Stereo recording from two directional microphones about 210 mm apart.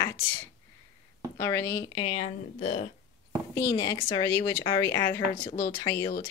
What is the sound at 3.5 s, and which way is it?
Speech, 15° left (ahead or behind).